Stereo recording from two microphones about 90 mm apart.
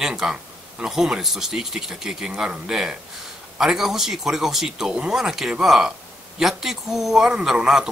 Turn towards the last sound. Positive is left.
turn(degrees=-5)  # may be behind; listen again after turning